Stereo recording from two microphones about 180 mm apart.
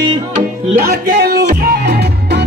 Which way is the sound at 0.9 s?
60° right (ahead or behind).